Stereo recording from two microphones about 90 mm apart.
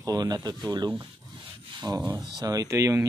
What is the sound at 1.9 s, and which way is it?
Speech, 30° right (ahead or behind).